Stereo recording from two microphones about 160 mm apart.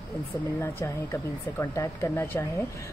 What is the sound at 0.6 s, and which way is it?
Speech, 15° left (ahead or behind).